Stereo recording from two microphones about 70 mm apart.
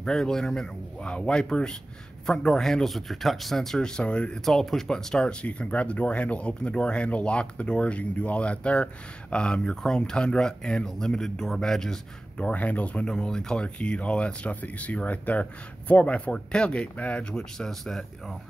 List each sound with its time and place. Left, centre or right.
0.0 s speech: centre
4.5 s speech: centre
12.4 s speech: left; by 18.4 s centre